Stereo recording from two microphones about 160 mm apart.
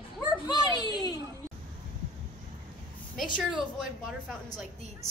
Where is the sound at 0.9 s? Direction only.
25° left (ahead or behind).